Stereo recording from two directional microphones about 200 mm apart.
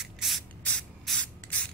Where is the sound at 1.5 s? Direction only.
5° left (ahead or behind).